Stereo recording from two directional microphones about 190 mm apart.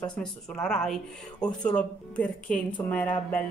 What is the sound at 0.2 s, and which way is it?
Speech, 5° left (ahead or behind).